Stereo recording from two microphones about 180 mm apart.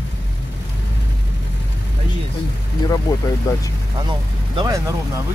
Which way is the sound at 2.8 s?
20° left (ahead or behind).